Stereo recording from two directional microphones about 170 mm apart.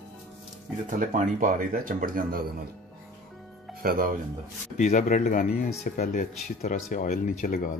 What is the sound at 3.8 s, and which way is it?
Speech, 55° right (ahead or behind).